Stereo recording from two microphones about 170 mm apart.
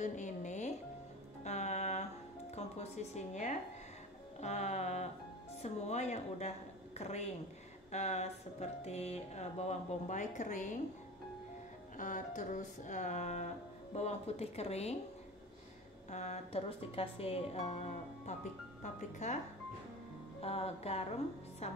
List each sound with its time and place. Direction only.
0.0 s music: 45° left (ahead or behind)
2.5 s a woman's voice: 40° left (ahead or behind)
4.4 s a sound: 40° left (ahead or behind)
5.6 s a woman's voice: 40° left (ahead or behind)
12.0 s a sound: 50° left (ahead or behind)
13.9 s a woman's voice: 40° left (ahead or behind)
16.1 s a woman's voice: 40° left (ahead or behind)
20.4 s a woman's voice: 35° left (ahead or behind)